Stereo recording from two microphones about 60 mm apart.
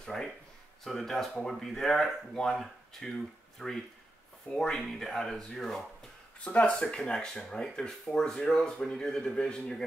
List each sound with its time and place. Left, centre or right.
0.0 s speech: centre
6.4 s speech: left
6.8 s speech: centre